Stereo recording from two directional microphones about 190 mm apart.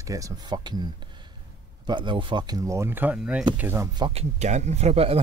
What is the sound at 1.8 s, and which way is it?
Speech, 25° right (ahead or behind).